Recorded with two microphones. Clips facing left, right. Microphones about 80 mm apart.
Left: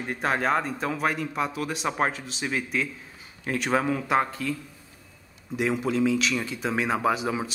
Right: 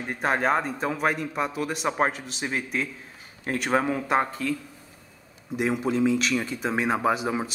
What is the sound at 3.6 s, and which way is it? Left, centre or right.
Speech, centre.